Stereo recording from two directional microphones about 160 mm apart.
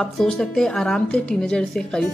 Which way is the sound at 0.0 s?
5° left (ahead or behind).